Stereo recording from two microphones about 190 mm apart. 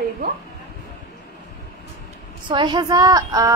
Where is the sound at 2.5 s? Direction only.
25° right (ahead or behind).